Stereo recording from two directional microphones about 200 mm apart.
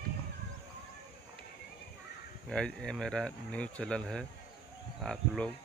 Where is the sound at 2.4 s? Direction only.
5° left (ahead or behind).